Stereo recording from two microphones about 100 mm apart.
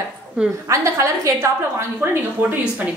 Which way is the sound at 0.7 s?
30° right (ahead or behind).